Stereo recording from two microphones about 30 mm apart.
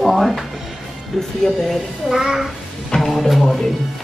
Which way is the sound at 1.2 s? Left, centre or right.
Centre.